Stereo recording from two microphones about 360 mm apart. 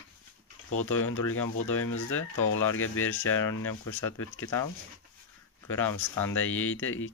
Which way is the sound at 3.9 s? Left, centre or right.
Left.